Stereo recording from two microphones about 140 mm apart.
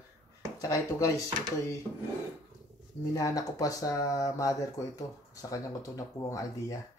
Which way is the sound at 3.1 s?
25° left (ahead or behind).